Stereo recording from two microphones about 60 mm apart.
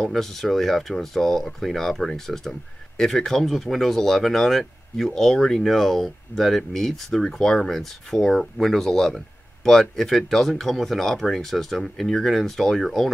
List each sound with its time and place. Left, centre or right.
0.0 s speech: centre